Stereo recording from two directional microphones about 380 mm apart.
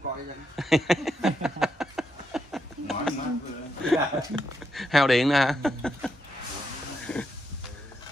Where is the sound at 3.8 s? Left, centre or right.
Centre.